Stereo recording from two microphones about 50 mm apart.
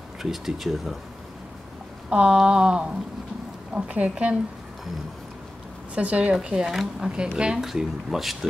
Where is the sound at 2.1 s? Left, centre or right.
Centre.